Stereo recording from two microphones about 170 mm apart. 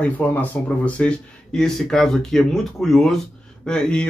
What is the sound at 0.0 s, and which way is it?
Speech, 10° left (ahead or behind).